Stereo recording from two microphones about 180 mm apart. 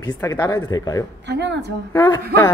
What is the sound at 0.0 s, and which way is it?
Speech, 15° left (ahead or behind).